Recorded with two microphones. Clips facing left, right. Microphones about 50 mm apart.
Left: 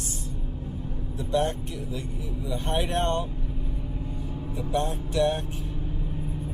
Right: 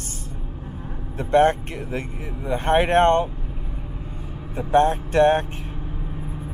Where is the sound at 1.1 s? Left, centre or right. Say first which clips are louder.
Right 9 dB; right.